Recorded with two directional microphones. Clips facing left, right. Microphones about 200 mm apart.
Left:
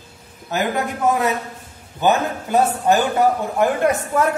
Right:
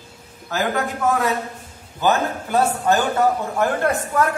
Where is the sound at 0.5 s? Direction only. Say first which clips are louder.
Left 1 dB; 20° left (ahead or behind).